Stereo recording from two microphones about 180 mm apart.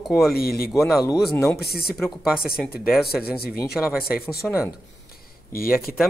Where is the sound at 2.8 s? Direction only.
5° right (ahead or behind).